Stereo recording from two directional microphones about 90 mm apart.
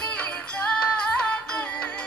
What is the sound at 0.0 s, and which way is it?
Music, 15° left (ahead or behind).